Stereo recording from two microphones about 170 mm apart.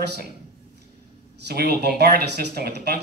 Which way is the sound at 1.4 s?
70° right (ahead or behind).